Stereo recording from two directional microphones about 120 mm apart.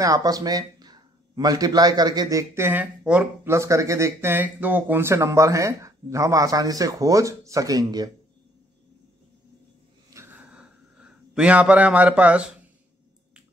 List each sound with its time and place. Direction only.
0.0 s speech: 30° right (ahead or behind); by 3.5 s 15° right (ahead or behind)
3.5 s speech: 25° right (ahead or behind)
10.1 s a sound: 15° right (ahead or behind)